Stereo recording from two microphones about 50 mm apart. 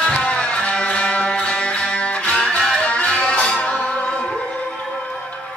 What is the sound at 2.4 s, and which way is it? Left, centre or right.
Music, centre.